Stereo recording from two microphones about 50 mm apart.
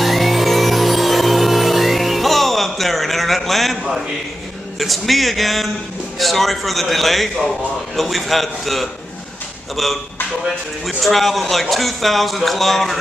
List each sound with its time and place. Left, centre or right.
0.0 s music: centre
4.7 s a man's voice: centre
10.4 s a man's voice: centre